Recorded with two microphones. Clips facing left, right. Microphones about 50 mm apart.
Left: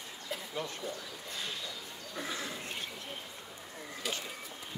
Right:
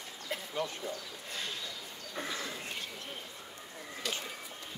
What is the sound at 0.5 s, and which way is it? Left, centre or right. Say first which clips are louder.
Speech: right 2 dB; right.